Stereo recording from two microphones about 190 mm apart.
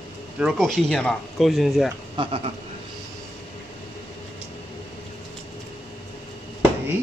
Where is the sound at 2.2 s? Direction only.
25° right (ahead or behind).